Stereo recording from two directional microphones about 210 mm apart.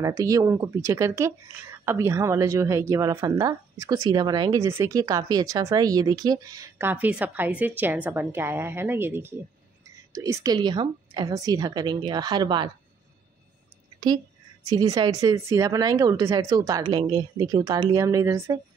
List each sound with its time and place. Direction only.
0.0 s a woman's voice: 15° right (ahead or behind)
13.9 s a sound: 20° right (ahead or behind)
14.7 s speech: 15° right (ahead or behind)